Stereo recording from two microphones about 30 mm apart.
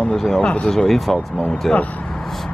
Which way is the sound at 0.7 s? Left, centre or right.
Centre.